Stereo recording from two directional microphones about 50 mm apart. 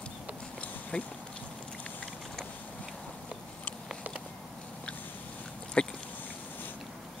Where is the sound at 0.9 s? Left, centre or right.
Left.